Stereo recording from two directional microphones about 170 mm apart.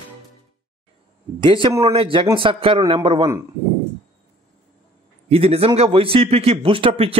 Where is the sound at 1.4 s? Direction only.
30° right (ahead or behind).